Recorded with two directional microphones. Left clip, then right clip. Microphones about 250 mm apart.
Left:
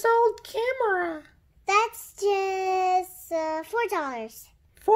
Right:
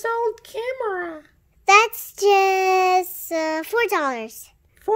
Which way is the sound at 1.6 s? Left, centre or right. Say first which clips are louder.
Right 8 dB; right.